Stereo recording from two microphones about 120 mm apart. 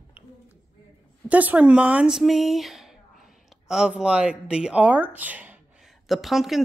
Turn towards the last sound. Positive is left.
turn(degrees=0)  # may be behind; listen again after turning